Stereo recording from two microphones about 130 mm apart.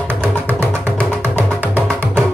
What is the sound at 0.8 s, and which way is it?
Music, 10° left (ahead or behind).